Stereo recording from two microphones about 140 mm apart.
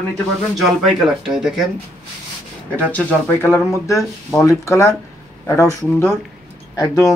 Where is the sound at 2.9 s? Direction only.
15° left (ahead or behind).